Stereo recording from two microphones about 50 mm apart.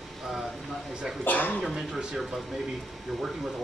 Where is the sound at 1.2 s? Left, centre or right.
Left.